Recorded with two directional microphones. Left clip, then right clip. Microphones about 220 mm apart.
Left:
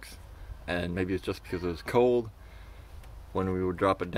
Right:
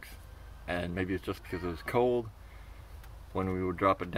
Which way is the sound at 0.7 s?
15° left (ahead or behind).